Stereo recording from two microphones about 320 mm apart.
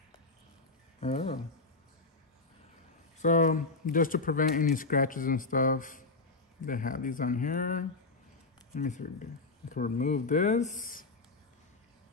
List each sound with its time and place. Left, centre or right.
1.0 s speech: centre
3.2 s speech: left